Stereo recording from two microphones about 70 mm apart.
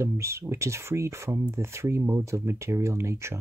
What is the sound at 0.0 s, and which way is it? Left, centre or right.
Speech, right.